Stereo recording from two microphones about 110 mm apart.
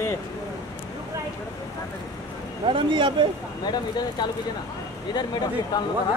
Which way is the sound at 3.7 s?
40° left (ahead or behind).